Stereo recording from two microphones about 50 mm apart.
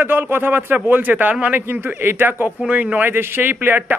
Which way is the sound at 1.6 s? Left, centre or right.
Right.